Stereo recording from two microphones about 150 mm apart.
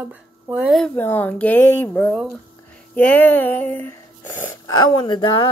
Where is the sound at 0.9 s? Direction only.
15° left (ahead or behind).